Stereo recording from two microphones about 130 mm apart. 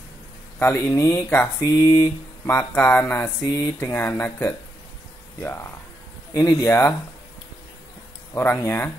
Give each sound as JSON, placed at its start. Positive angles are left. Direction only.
{"t": 0.6, "sound": "speech", "side_deg": 15}
{"t": 8.4, "sound": "speech", "side_deg": 15}